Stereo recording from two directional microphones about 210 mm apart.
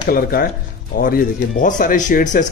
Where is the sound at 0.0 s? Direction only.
45° left (ahead or behind).